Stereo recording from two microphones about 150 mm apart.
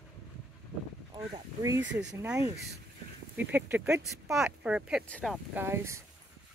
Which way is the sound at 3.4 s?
10° right (ahead or behind).